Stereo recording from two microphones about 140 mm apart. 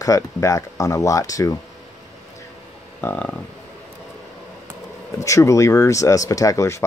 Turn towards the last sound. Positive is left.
turn(degrees=20)  # may be behind; listen again after turning